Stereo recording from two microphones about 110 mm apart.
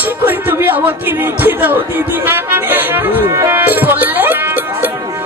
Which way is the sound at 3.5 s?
15° right (ahead or behind).